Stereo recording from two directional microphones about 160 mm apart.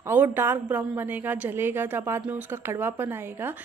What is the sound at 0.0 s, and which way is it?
Speech, 10° right (ahead or behind).